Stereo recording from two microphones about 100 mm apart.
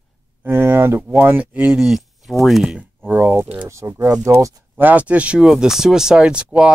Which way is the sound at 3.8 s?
35° right (ahead or behind).